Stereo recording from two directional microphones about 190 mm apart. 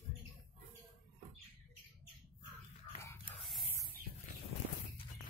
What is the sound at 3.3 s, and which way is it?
Spray, 5° right (ahead or behind).